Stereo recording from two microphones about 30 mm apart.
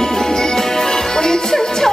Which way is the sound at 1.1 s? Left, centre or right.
Centre.